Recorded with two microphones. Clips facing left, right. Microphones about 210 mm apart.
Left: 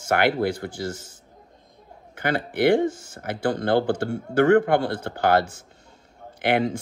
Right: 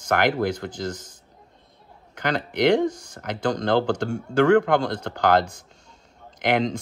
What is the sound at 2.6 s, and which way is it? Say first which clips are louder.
Speech: even; 5° left (ahead or behind).